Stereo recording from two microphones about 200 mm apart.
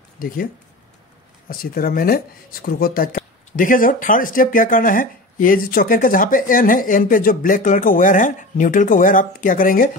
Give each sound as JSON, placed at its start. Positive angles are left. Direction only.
{"t": 0.2, "sound": "speech", "side_deg": 45}
{"t": 1.5, "sound": "speech", "side_deg": 45}